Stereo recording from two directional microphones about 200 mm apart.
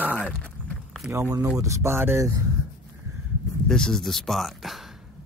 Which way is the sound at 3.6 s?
5° left (ahead or behind).